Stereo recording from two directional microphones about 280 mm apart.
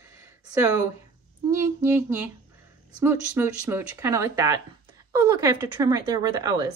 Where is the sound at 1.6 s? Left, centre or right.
Centre.